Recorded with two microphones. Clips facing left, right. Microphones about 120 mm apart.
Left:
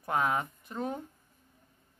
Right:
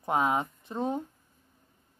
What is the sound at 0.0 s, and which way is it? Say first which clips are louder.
Speech: right 3 dB; 20° right (ahead or behind).